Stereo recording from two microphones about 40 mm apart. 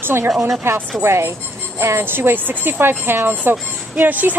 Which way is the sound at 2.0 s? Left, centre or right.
Right.